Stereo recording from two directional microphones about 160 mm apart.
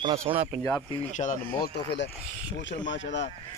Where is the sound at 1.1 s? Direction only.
50° left (ahead or behind).